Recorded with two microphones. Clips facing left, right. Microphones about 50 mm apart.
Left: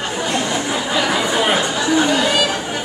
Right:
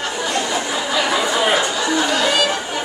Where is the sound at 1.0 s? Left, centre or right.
Centre.